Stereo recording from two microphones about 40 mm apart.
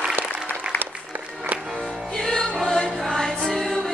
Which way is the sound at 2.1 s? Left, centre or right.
Centre.